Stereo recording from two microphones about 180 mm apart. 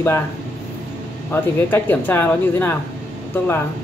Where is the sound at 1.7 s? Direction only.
10° left (ahead or behind).